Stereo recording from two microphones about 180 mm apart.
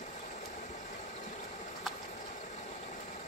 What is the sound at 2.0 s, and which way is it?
Engine, 45° left (ahead or behind).